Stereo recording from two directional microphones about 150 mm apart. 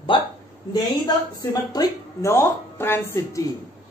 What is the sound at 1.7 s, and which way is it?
Speech, 20° left (ahead or behind).